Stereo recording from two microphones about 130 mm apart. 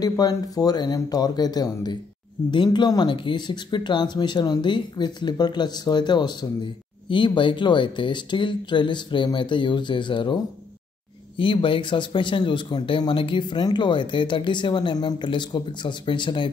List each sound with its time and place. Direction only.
0.0 s speech: 30° left (ahead or behind)